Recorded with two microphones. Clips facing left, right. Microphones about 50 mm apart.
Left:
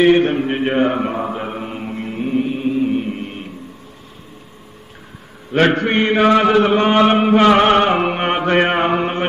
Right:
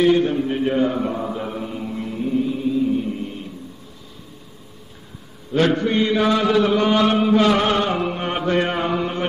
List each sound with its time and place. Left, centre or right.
0.0 s mantra: left
5.5 s chant: left